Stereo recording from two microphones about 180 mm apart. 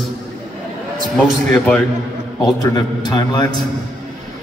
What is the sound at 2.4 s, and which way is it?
A man's voice, 20° left (ahead or behind).